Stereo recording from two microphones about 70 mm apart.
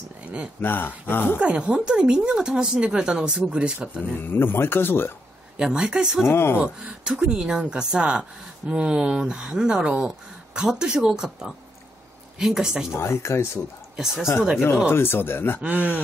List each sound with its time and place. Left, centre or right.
0.6 s speech: left
1.4 s speech: centre
4.2 s speech: left
5.6 s speech: centre
6.2 s speech: left
6.6 s speech: centre
12.9 s speech: left
13.9 s speech: centre
14.9 s speech: left
15.6 s speech: centre